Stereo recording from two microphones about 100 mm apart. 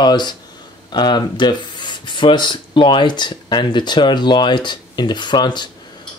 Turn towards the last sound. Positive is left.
turn(degrees=50)  # may be behind; listen again after turning